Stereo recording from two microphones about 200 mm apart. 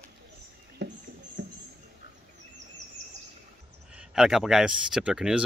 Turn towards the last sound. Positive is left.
turn(degrees=-5)  # may be behind; listen again after turning